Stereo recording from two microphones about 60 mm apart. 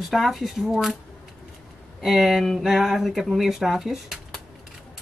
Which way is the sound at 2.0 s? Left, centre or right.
Centre.